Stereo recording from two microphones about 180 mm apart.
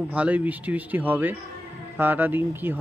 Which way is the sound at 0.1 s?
5° right (ahead or behind).